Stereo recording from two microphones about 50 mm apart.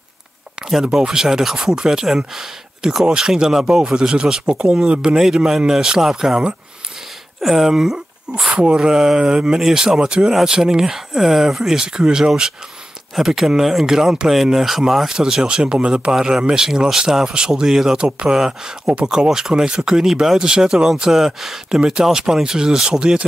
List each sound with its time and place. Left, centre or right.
0.7 s speech: centre